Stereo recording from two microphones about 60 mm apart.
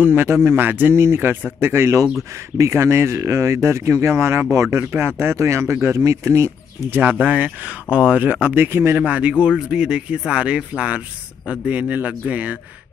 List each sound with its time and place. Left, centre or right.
0.0 s speech: right
0.9 s speech: right
5.9 s speech: right
7.0 s speech: right
8.9 s speech: right